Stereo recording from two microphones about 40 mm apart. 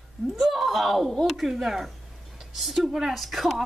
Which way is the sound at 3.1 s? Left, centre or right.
Centre.